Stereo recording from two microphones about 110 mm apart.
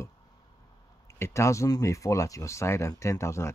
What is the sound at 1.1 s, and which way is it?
Speech, 25° left (ahead or behind).